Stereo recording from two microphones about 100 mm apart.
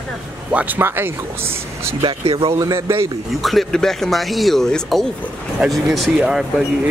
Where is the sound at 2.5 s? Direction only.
35° right (ahead or behind).